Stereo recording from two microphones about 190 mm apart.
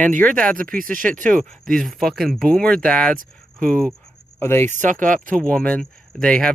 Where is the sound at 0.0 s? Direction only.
45° right (ahead or behind).